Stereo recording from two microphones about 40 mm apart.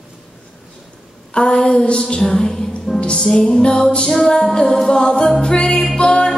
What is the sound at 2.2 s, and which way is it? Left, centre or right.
Music, centre.